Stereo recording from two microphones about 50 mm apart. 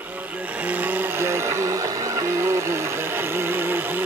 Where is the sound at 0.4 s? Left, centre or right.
Right.